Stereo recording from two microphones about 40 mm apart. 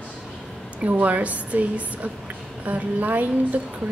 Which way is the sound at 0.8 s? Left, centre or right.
Right.